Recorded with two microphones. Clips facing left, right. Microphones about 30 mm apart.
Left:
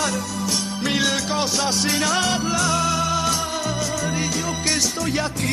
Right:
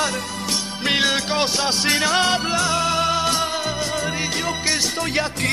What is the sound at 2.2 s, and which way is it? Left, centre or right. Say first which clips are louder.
Music: right 2 dB; right.